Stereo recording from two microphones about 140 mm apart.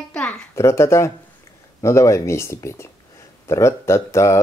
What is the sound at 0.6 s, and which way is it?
Speech, 20° left (ahead or behind).